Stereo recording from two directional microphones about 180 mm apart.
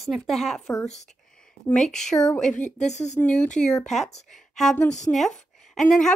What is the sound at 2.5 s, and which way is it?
Speech, 40° left (ahead or behind).